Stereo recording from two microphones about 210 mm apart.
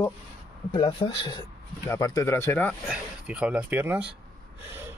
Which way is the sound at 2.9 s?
5° right (ahead or behind).